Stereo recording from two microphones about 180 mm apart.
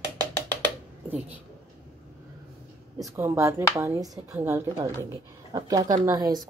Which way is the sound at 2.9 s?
15° right (ahead or behind).